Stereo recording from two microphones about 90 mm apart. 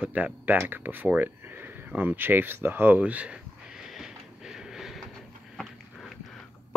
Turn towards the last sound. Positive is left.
turn(degrees=5)  # may be behind; listen again after turning